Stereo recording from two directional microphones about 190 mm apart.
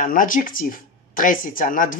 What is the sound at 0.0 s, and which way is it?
Speech, 45° left (ahead or behind).